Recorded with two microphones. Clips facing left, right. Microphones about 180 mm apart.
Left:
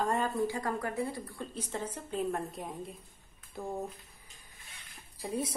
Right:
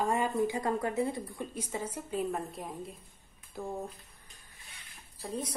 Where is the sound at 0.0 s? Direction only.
10° right (ahead or behind).